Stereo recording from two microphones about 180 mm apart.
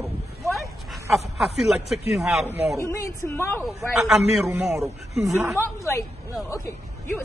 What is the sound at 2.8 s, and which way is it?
Speech, 15° left (ahead or behind).